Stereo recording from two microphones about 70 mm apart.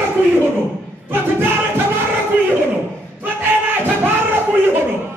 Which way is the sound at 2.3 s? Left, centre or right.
Right.